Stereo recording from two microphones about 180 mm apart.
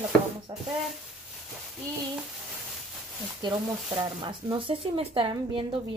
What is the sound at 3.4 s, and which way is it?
Speech, 25° right (ahead or behind).